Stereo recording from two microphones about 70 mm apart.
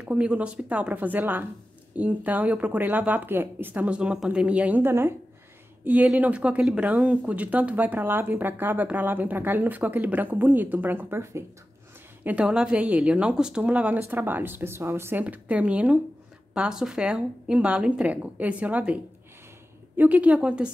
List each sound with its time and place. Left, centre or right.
0.0 s speech: centre; by 5.1 s right
6.1 s a woman's voice: right
12.4 s speech: centre; by 15.2 s right
15.2 s a woman's voice: right
20.0 s a woman's voice: right